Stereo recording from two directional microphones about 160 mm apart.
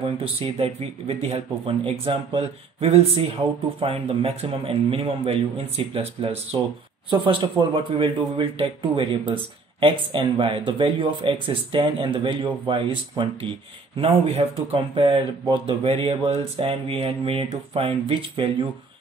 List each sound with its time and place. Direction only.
0.2 s speech: 35° right (ahead or behind)